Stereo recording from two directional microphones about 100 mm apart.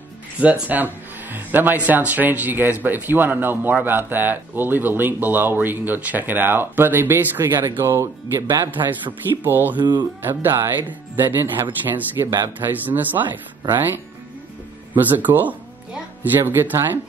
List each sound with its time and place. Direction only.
0.4 s speech: 15° right (ahead or behind)
8.5 s a man's voice: 40° right (ahead or behind)
9.4 s speech: 20° right (ahead or behind)
9.8 s a man's voice: 45° right (ahead or behind)
10.2 s speech: 20° right (ahead or behind)
15.0 s speech: 20° right (ahead or behind)